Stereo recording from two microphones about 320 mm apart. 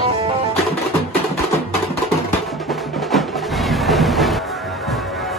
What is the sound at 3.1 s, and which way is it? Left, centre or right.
Music, centre.